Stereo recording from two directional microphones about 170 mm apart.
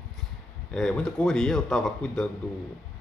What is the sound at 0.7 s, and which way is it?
Speech, 5° left (ahead or behind).